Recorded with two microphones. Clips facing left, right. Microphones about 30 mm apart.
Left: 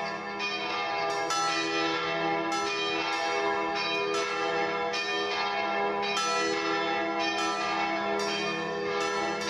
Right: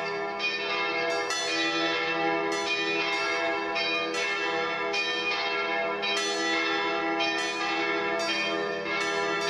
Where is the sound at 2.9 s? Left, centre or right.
Right.